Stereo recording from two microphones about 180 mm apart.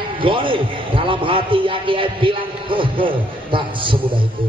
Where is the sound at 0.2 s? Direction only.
30° right (ahead or behind).